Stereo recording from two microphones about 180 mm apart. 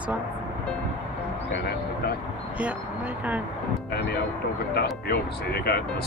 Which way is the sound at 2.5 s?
10° right (ahead or behind).